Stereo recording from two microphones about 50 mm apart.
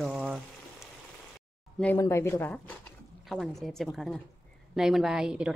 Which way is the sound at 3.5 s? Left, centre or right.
Centre.